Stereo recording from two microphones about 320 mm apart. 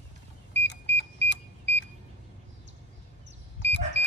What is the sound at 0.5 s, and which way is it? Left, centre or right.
Vehicle, left.